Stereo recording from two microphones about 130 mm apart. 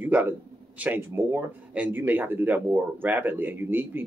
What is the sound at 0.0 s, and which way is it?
Speech, 15° right (ahead or behind).